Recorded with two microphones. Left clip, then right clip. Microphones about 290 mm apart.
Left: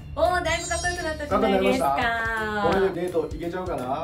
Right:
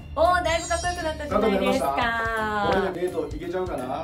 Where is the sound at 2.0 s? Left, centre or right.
Centre.